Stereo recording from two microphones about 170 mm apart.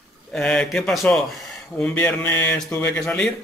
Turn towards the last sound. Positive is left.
turn(degrees=5)  # may be behind; listen again after turning